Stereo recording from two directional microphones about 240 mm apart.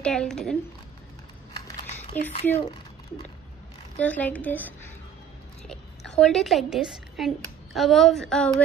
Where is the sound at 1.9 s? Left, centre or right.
Left.